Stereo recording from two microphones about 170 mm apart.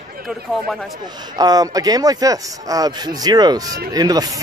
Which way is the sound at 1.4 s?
20° right (ahead or behind).